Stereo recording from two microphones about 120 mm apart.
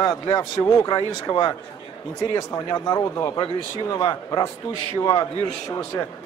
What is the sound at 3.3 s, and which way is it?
A man's voice, 35° left (ahead or behind).